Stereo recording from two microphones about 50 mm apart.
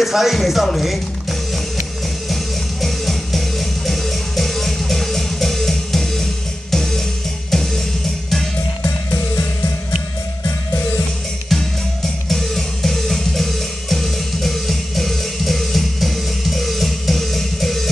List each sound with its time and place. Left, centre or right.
0.0 s speech: centre
2.2 s music: centre
9.1 s music: left
11.4 s music: centre